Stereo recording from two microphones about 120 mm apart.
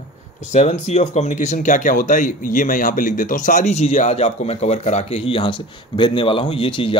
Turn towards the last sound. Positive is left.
turn(degrees=45)  # may be behind; listen again after turning